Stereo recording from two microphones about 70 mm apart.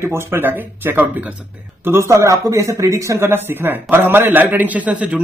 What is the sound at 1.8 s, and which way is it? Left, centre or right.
Speech, right.